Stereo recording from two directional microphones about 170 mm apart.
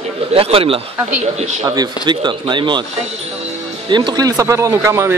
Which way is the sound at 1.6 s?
20° right (ahead or behind).